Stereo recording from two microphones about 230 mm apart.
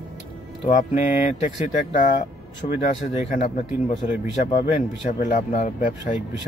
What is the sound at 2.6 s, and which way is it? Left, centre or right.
Speech, left.